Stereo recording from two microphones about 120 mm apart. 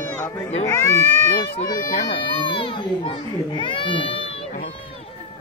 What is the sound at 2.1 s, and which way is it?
Speech, 45° left (ahead or behind).